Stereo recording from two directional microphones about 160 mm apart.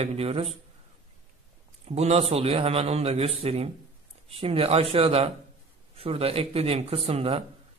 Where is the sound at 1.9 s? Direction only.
40° right (ahead or behind).